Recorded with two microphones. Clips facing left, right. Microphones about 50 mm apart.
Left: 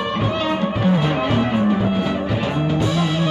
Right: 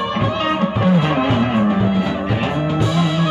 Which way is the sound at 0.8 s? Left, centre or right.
Right.